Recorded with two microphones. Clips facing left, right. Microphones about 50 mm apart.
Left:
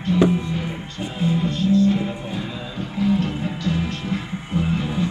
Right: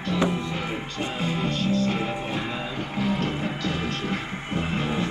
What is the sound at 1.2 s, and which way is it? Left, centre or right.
Music, right.